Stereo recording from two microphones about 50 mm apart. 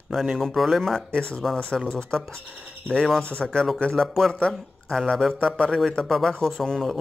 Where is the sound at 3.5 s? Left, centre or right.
Centre.